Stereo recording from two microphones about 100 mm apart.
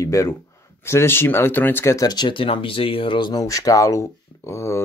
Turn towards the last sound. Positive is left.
turn(degrees=25)  # may be behind; listen again after turning